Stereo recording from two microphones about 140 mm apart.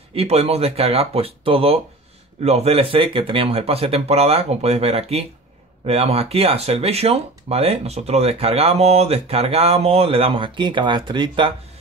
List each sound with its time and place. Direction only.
0.1 s speech: 45° right (ahead or behind)